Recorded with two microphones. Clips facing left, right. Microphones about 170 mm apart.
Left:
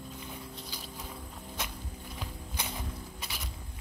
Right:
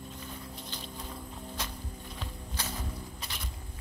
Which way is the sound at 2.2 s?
10° left (ahead or behind).